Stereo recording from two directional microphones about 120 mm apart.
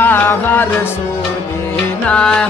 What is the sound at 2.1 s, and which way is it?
Music, 5° left (ahead or behind).